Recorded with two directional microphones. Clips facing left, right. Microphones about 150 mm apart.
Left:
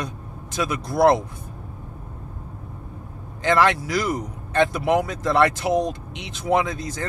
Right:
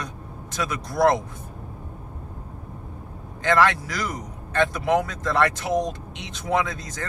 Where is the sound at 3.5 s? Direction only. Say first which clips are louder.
Left 1 dB; 15° left (ahead or behind).